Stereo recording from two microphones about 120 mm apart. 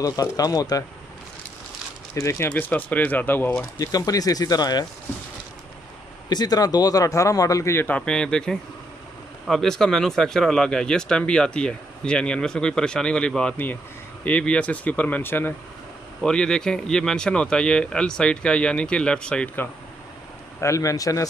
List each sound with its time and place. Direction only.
0.0 s speech: 30° left (ahead or behind)
2.1 s speech: 20° left (ahead or behind)
3.7 s speech: 30° left (ahead or behind)
6.2 s a man's voice: 35° left (ahead or behind); by 15.5 s 15° left (ahead or behind)
16.2 s speech: 5° left (ahead or behind)
20.6 s a man's voice: 25° left (ahead or behind)